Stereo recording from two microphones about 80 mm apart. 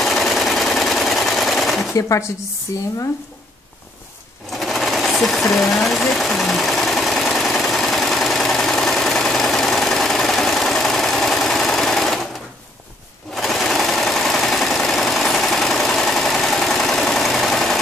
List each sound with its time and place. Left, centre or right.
0.0 s sewing machine: centre
2.0 s speech: left
4.5 s sewing machine: centre
13.3 s sewing machine: centre